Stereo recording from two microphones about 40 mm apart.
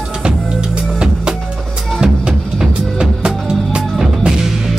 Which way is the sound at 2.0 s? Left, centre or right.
Centre.